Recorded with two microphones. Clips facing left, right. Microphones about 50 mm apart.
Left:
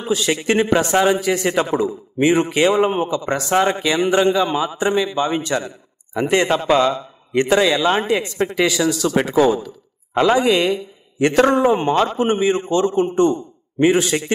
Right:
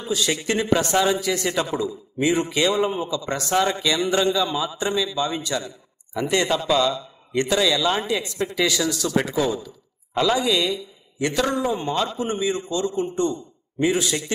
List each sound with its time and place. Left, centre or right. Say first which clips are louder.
0.0 s a man's voice: left 4 dB; left